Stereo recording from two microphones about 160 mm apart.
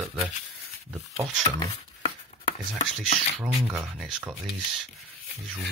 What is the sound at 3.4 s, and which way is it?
Speech, 15° right (ahead or behind).